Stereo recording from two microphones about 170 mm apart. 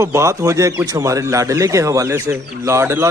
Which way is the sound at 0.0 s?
20° right (ahead or behind).